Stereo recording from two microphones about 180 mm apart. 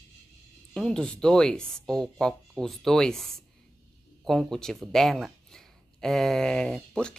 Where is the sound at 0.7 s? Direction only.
5° left (ahead or behind).